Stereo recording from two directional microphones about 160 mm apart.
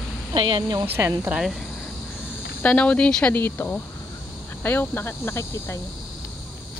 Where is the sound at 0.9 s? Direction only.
15° right (ahead or behind).